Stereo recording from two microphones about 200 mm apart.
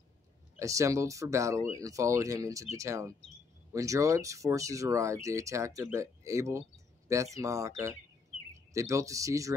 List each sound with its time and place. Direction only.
0.6 s speech: 15° right (ahead or behind)